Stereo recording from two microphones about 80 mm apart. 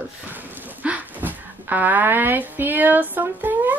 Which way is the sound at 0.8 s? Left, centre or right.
Right.